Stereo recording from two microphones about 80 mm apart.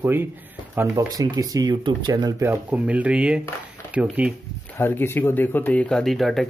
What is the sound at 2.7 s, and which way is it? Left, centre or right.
Speech, centre.